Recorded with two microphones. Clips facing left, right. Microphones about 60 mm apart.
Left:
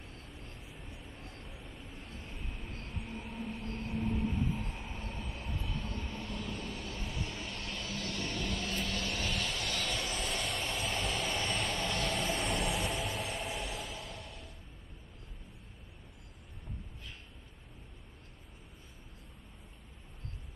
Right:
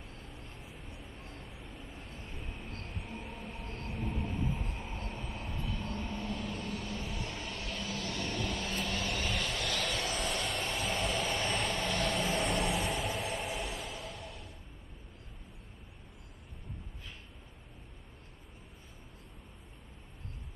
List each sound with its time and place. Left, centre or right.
0.4 s vehicle: centre
3.9 s train: centre
5.3 s vehicle: centre